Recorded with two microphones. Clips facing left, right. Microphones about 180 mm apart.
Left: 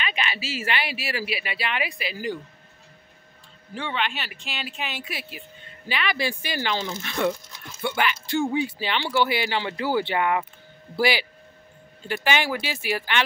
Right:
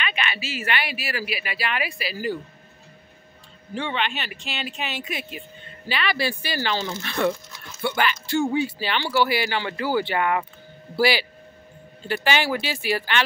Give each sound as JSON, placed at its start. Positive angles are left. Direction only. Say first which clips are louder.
{"t": 0.3, "sound": "speech", "louder": "right 1 dB", "side_deg": 30}
{"t": 3.7, "sound": "speech", "louder": "right 2 dB", "side_deg": 5}